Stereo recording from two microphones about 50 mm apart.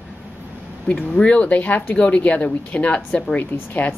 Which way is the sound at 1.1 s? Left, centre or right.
Left.